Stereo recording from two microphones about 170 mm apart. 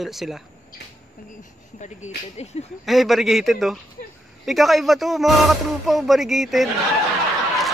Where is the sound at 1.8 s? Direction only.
45° left (ahead or behind).